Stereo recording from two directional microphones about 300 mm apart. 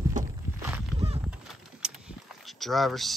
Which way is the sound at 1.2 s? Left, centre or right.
Centre.